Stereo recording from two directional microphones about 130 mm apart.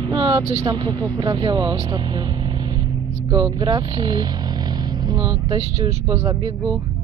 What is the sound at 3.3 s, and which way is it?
Speech, 35° right (ahead or behind).